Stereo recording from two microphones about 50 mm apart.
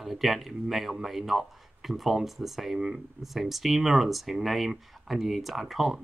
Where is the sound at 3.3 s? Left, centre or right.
Centre.